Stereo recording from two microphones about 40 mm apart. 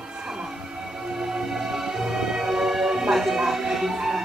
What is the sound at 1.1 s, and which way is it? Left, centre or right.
Music, centre.